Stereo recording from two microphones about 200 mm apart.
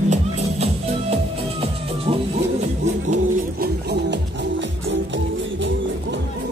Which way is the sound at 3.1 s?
50° right (ahead or behind).